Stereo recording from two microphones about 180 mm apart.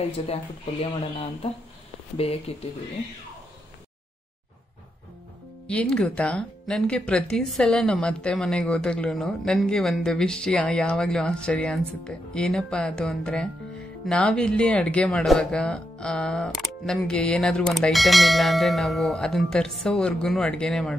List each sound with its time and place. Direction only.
0.3 s speech: 35° left (ahead or behind)
5.7 s speech: 5° left (ahead or behind)